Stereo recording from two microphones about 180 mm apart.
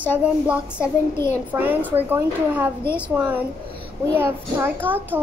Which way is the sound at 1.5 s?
10° right (ahead or behind).